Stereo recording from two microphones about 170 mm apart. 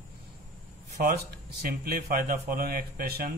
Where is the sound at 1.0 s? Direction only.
65° right (ahead or behind).